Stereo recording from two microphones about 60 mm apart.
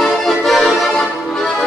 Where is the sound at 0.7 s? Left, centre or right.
Centre.